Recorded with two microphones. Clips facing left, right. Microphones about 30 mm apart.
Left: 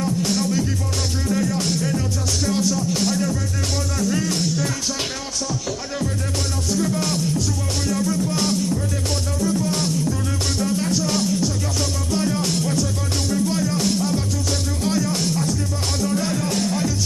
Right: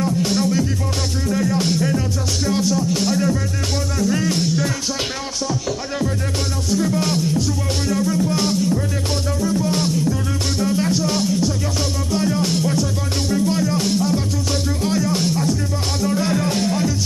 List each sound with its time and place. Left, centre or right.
0.0 s music: centre
6.7 s music: centre